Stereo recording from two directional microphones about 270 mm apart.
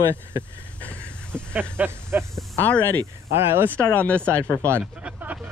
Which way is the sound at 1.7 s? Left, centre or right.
Centre.